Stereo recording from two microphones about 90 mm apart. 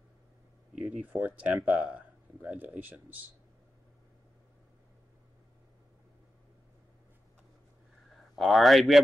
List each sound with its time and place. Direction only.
0.7 s a sound: 10° right (ahead or behind)
1.1 s speech: 20° right (ahead or behind)
8.4 s speech: centre (ahead or behind)